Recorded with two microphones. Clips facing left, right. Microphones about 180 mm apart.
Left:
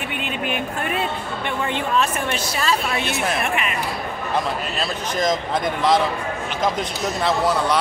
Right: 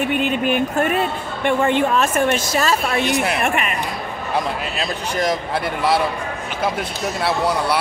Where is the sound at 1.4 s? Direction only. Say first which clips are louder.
Right 9 dB; 50° right (ahead or behind).